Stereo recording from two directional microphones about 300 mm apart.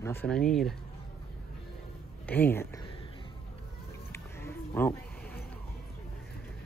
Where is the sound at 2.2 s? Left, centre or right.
Centre.